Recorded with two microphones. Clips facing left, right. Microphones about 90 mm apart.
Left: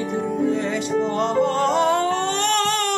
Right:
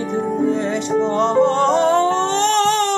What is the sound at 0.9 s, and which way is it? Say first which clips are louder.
Music: right 5 dB; 30° right (ahead or behind).